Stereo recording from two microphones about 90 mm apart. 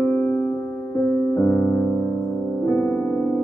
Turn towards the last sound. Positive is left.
turn(degrees=20)  # may be behind; listen again after turning